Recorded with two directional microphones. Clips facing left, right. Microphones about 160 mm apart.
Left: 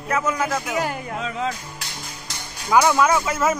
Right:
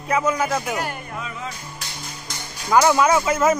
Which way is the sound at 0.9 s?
90° left.